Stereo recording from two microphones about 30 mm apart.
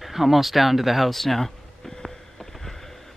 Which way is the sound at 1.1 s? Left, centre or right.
Centre.